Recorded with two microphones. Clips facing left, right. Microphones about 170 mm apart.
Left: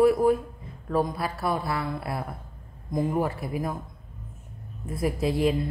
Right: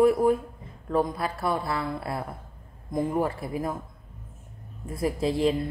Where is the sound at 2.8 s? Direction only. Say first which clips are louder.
Even; centre (ahead or behind).